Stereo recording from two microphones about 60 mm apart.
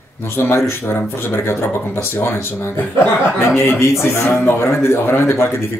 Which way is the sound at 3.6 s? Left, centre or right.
Left.